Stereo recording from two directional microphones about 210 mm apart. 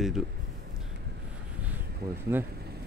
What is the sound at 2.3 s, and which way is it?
Speech, 10° right (ahead or behind).